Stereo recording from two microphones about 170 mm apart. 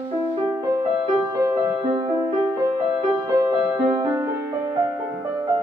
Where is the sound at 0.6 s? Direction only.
25° right (ahead or behind).